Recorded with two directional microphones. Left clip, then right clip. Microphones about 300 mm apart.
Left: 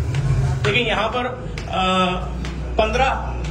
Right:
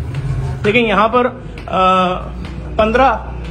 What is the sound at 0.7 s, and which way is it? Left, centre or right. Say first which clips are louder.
A man's voice: right 9 dB; centre.